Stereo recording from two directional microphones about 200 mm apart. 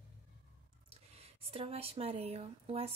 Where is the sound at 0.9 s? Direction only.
30° right (ahead or behind).